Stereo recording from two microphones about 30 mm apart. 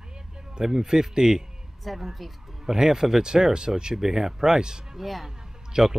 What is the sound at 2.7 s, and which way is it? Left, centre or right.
Speech, centre.